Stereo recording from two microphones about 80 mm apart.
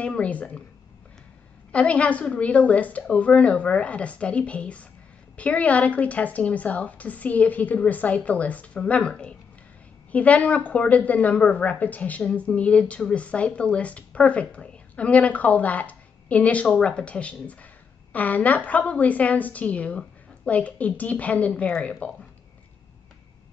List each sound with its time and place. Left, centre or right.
0.0 s a woman's voice: centre
1.7 s a woman's voice: centre